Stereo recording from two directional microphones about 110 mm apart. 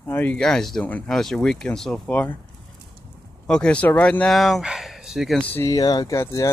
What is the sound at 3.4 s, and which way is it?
Speech, 10° left (ahead or behind).